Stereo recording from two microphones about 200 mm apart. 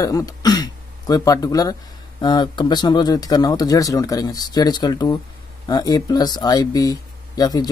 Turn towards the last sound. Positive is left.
turn(degrees=20)  # may be behind; listen again after turning